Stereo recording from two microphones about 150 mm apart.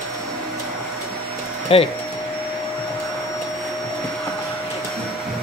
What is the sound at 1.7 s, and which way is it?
Speech, 40° left (ahead or behind).